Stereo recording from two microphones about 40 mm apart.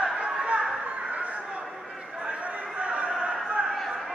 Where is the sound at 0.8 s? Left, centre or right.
Right.